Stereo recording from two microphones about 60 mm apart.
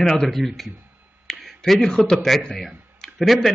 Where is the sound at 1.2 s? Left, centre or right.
Centre.